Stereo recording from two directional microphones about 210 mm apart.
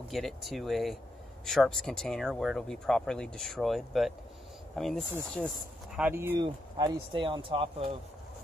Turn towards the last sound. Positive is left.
turn(degrees=-25)  # may be behind; listen again after turning